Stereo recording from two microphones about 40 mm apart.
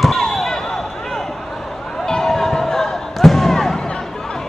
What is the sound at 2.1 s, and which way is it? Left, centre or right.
Basketball bounce, centre.